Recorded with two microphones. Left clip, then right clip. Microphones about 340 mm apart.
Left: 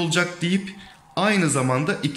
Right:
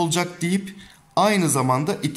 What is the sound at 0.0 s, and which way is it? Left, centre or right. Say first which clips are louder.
A man's voice: left 1 dB; centre.